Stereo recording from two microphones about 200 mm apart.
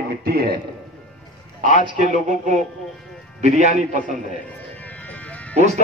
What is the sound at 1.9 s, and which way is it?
A man's voice, 40° right (ahead or behind).